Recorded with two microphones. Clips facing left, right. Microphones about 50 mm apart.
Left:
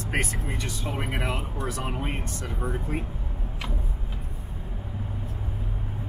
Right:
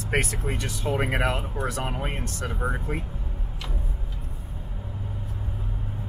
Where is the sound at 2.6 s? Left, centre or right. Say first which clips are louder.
Right 2 dB; right.